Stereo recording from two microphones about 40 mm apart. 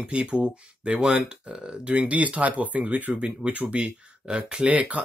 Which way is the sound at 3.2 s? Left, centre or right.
Right.